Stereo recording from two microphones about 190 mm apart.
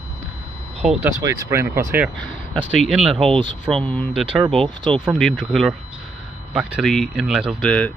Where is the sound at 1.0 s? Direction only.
15° right (ahead or behind).